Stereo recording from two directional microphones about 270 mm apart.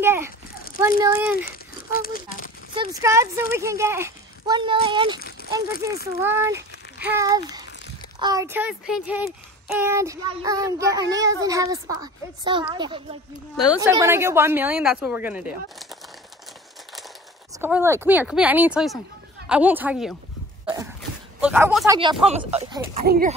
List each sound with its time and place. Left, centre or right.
0.0 s child singing: centre
1.3 s a sound: left
2.7 s child singing: centre
6.1 s a child's voice: centre
8.2 s child singing: centre
17.6 s child singing: centre
19.5 s speech: centre
21.4 s child singing: centre
22.2 s speech: right